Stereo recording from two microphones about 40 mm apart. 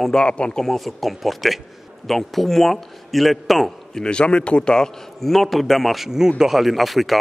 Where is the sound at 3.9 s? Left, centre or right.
Left.